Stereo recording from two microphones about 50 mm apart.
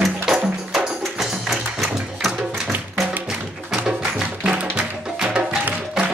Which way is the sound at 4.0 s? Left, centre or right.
Centre.